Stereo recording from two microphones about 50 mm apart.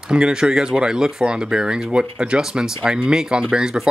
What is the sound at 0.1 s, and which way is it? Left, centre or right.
Speech, centre.